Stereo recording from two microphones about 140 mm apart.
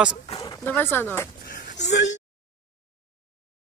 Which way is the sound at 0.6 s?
15° left (ahead or behind).